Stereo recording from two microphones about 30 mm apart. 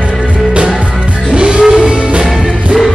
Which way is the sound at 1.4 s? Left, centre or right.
Right.